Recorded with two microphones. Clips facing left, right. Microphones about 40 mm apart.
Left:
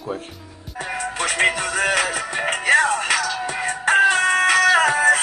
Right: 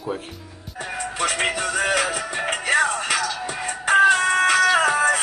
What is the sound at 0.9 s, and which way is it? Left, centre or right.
Music, left.